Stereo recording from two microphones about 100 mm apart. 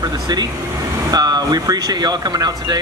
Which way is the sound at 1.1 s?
40° right (ahead or behind).